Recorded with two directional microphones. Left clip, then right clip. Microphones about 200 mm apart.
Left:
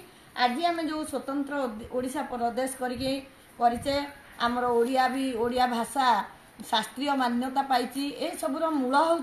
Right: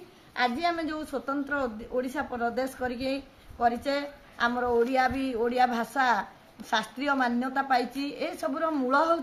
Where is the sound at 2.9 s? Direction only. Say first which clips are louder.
Left 1 dB; 5° right (ahead or behind).